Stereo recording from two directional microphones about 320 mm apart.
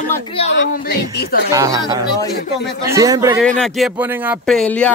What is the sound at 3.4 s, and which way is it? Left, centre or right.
Speech, centre.